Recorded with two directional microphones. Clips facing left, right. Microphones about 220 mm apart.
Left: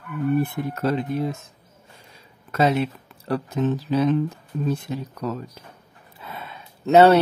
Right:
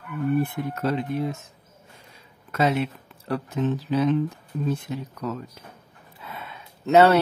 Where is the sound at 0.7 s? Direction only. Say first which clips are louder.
Left 2 dB; 35° left (ahead or behind).